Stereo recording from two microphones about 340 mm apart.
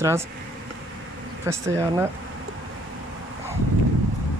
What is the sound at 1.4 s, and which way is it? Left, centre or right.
Speech, centre.